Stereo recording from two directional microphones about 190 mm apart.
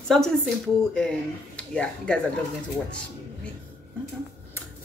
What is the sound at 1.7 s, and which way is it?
Music, 5° left (ahead or behind).